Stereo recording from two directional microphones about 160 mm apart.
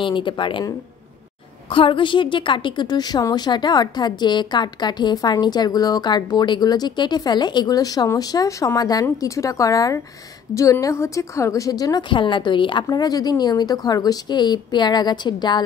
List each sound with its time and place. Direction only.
0.0 s a woman's voice: 30° left (ahead or behind)